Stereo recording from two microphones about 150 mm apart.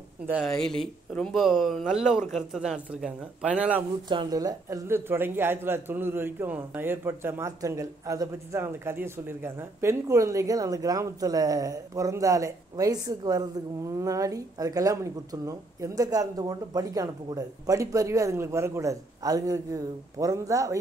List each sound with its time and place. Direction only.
0.3 s speech: centre (ahead or behind)
4.1 s speech: 30° right (ahead or behind)